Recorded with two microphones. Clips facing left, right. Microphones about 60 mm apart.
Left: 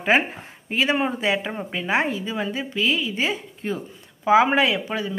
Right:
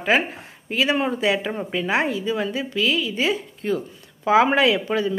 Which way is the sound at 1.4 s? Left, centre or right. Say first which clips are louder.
Right 2 dB; centre.